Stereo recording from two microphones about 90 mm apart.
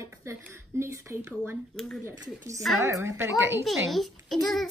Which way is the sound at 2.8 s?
30° right (ahead or behind).